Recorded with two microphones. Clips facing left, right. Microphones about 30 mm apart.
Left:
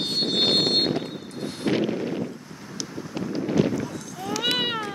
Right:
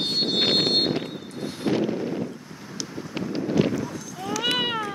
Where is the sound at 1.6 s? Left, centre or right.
Centre.